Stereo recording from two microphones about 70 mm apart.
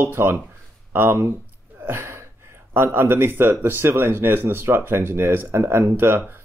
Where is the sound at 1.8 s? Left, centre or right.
Right.